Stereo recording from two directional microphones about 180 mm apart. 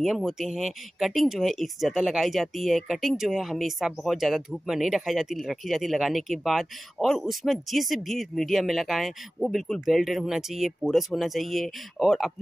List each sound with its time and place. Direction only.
0.0 s speech: centre (ahead or behind)